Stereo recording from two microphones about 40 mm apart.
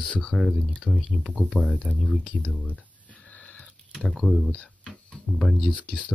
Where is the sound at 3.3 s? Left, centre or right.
Left.